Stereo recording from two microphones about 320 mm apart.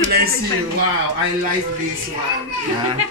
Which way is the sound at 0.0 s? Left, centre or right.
Right.